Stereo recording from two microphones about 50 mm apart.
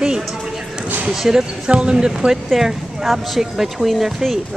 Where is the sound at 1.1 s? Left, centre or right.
Centre.